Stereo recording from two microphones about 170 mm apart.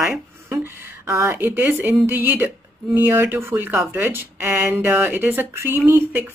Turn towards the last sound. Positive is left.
turn(degrees=-15)  # may be behind; listen again after turning